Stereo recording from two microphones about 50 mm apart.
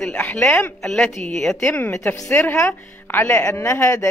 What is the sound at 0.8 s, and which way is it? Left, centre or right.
Speech, centre.